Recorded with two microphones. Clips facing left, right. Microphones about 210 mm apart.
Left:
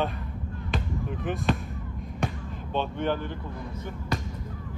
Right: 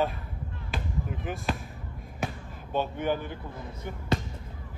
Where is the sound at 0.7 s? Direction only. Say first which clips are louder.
Left 3 dB; centre (ahead or behind).